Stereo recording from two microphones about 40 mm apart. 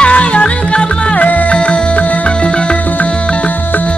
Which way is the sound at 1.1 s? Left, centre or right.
Left.